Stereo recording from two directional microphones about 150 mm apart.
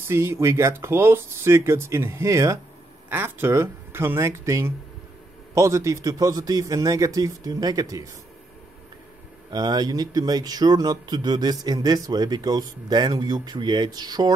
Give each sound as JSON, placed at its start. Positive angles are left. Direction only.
{"t": 0.0, "sound": "speech", "side_deg": -15}
{"t": 9.5, "sound": "speech", "side_deg": -25}